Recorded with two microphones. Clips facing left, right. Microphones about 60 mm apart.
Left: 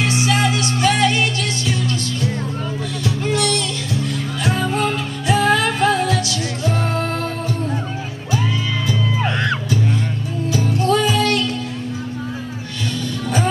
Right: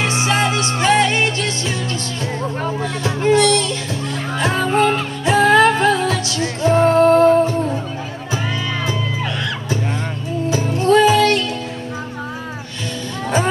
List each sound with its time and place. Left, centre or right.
0.0 s music: right
3.0 s music: right
10.5 s music: right